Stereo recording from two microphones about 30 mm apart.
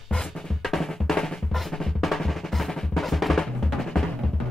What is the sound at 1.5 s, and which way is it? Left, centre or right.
Drum, centre.